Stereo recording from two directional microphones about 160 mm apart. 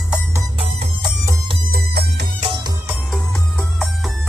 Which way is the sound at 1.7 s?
85° right.